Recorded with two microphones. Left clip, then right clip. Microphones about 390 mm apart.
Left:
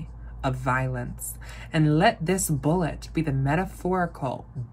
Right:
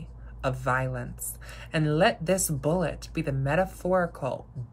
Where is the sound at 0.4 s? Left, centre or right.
Centre.